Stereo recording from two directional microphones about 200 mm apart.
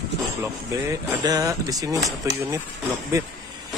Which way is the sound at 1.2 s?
20° right (ahead or behind).